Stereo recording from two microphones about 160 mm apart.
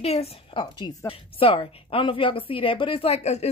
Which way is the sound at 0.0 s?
40° left (ahead or behind).